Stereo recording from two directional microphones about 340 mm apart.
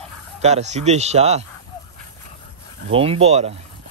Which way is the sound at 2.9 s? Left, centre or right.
Centre.